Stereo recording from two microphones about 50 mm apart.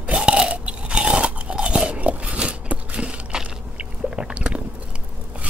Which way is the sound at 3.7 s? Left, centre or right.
Right.